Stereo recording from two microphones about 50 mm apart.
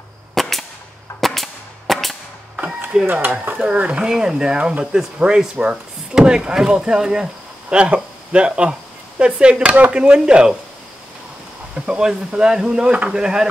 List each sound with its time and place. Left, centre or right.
0.3 s cap gun: centre
1.2 s music: centre
2.5 s a sound: right
3.9 s speech: centre
11.7 s speech: right